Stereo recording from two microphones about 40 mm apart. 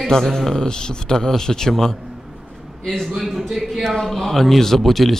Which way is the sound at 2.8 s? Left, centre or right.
Centre.